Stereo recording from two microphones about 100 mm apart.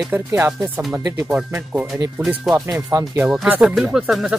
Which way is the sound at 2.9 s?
25° right (ahead or behind).